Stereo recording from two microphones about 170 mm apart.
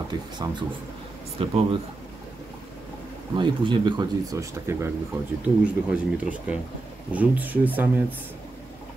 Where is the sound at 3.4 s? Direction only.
25° right (ahead or behind); by 7.6 s 10° right (ahead or behind).